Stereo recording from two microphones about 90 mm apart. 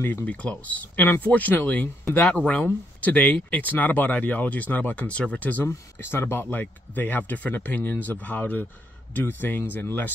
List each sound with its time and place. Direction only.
0.0 s speech: 20° left (ahead or behind)